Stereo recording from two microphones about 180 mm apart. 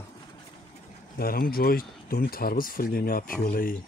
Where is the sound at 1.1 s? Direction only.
55° left (ahead or behind).